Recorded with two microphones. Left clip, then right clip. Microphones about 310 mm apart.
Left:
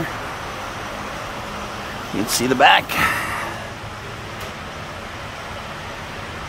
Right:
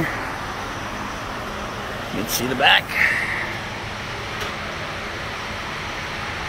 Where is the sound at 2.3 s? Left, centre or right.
Centre.